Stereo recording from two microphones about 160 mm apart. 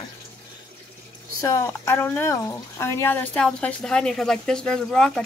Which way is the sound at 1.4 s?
20° left (ahead or behind).